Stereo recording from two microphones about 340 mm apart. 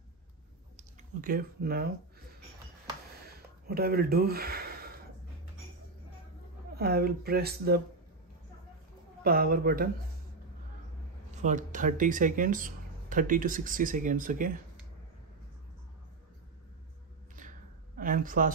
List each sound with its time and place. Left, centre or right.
0.7 s a sound: right
3.6 s speech: right
6.7 s speech: right
9.2 s speech: right
11.4 s speech: right
17.9 s speech: right